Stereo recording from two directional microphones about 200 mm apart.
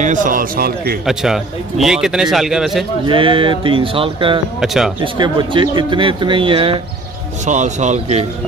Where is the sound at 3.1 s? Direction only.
25° right (ahead or behind).